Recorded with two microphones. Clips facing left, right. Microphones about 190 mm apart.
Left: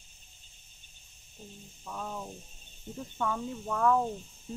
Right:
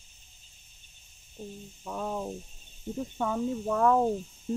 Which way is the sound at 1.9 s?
40° right (ahead or behind).